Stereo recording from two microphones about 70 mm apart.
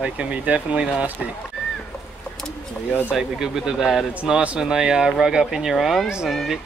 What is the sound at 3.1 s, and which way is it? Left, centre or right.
Speech, centre.